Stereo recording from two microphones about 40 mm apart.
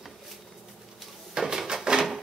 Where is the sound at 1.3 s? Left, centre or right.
Centre.